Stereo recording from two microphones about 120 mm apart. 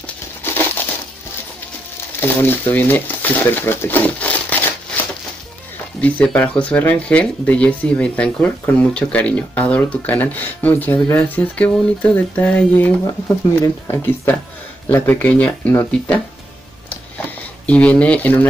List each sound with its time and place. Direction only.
0.0 s crumpling: 15° left (ahead or behind)
2.1 s speech: 15° left (ahead or behind)
17.6 s speech: 10° left (ahead or behind)